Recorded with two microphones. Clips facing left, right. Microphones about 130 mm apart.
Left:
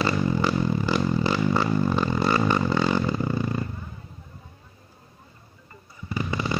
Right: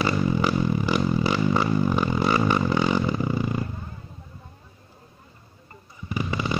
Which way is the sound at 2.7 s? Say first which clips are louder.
Right 1 dB; 15° right (ahead or behind).